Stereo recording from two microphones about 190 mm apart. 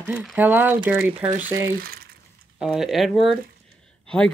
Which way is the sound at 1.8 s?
50° right (ahead or behind).